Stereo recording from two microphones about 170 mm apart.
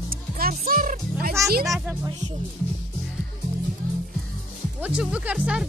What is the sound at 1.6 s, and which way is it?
Music, 5° right (ahead or behind).